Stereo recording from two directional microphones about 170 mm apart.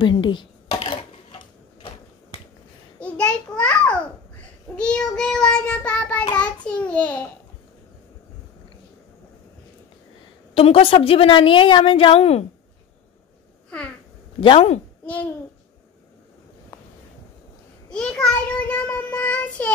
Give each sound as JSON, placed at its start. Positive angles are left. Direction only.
{"t": 0.0, "sound": "a sound", "side_deg": 30}
{"t": 3.0, "sound": "a child's voice", "side_deg": 5}
{"t": 4.7, "sound": "child singing", "side_deg": 5}
{"t": 6.3, "sound": "a child's voice", "side_deg": 5}
{"t": 10.5, "sound": "a woman's voice", "side_deg": 35}
{"t": 14.4, "sound": "a woman's voice", "side_deg": 30}
{"t": 17.8, "sound": "child singing", "side_deg": 5}